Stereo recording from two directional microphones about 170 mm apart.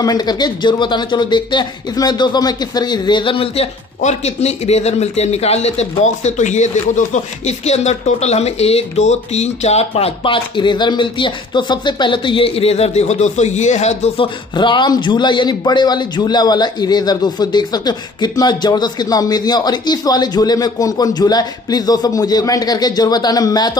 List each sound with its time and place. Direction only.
0.0 s speech: 25° left (ahead or behind)